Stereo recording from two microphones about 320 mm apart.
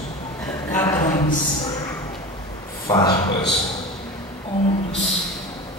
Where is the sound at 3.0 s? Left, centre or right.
Left.